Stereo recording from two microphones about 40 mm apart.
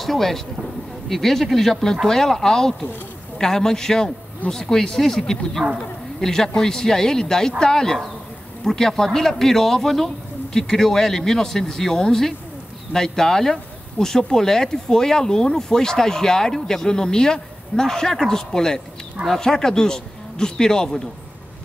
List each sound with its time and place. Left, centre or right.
0.0 s speech: centre